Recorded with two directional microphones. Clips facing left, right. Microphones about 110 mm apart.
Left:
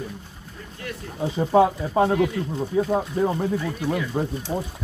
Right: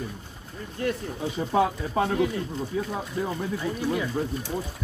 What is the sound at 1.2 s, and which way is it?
Speech, 30° left (ahead or behind).